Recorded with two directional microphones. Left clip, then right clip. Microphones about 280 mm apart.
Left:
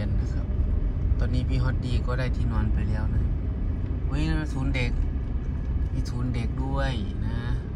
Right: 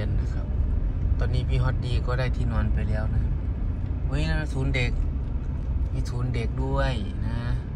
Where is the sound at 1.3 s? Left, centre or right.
Left.